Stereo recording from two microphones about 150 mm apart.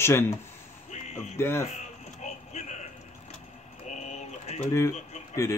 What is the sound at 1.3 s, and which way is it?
Speech, 15° left (ahead or behind).